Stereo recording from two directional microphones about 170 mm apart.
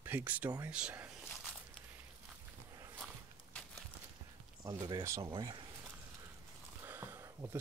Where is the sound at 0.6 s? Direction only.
5° right (ahead or behind).